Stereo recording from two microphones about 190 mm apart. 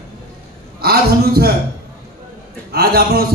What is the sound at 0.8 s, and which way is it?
Speech, 55° right (ahead or behind).